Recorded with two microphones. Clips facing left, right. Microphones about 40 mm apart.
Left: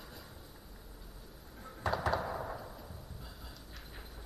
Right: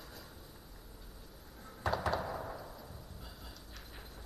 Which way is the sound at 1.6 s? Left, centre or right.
Centre.